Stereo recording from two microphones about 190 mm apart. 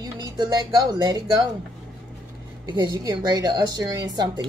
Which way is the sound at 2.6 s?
25° right (ahead or behind).